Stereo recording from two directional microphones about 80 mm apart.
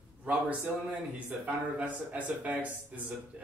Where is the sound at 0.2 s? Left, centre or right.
Centre.